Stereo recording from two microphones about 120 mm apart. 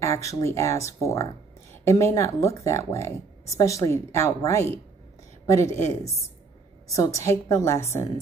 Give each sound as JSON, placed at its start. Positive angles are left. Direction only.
{"t": 0.0, "sound": "speech", "side_deg": 25}
{"t": 7.2, "sound": "speech", "side_deg": 25}